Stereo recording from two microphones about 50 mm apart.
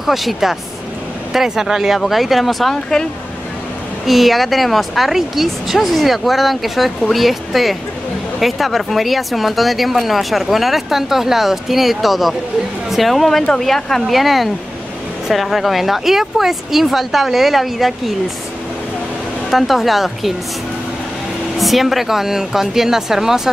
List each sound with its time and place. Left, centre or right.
0.0 s speech: centre
2.7 s speech: centre
4.0 s speech: centre
19.5 s speech: centre
21.5 s speech: centre